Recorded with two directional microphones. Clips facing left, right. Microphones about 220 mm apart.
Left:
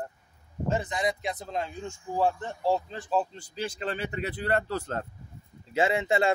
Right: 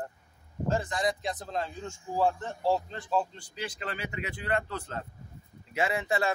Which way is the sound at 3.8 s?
30° left (ahead or behind).